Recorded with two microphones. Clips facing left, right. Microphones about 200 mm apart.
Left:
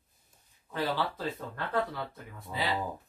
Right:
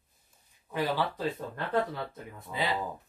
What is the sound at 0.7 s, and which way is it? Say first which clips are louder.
Speech: right 2 dB; 15° right (ahead or behind).